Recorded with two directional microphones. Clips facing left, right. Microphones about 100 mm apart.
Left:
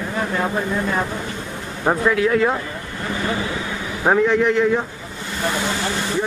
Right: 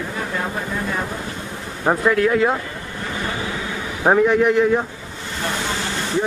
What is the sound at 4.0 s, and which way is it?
Speech, 5° right (ahead or behind).